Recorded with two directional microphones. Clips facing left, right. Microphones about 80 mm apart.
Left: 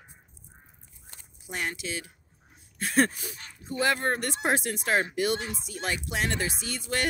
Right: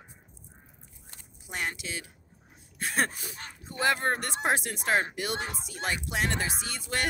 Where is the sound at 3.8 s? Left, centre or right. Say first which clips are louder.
Even; centre.